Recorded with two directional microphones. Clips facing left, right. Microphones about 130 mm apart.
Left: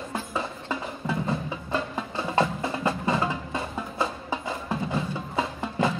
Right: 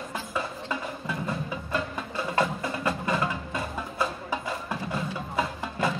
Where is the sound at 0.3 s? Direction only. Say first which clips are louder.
Right 1 dB; 25° left (ahead or behind).